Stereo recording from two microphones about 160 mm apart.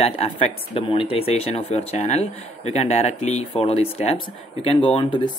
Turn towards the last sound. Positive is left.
turn(degrees=30)  # may be behind; listen again after turning